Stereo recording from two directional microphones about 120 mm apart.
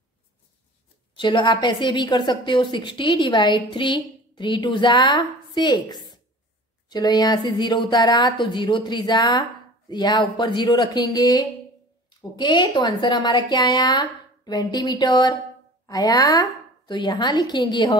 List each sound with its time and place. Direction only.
1.1 s a woman's voice: 40° left (ahead or behind)